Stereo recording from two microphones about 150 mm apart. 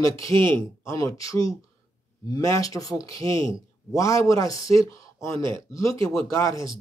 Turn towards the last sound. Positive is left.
turn(degrees=20)  # may be behind; listen again after turning